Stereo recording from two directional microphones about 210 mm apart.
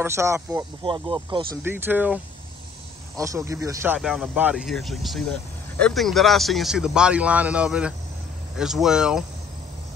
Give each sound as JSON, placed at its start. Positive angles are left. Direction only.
{"t": 0.0, "sound": "speech", "side_deg": -15}
{"t": 1.6, "sound": "speech", "side_deg": -10}
{"t": 3.2, "sound": "speech", "side_deg": -15}